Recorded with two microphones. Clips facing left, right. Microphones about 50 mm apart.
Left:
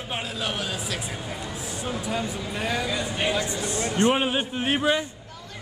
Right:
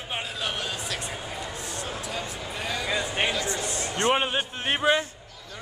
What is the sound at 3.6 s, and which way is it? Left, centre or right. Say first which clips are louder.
Speech: left 4 dB; left.